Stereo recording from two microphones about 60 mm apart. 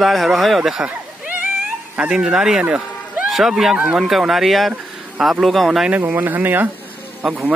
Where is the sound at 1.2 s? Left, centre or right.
Right.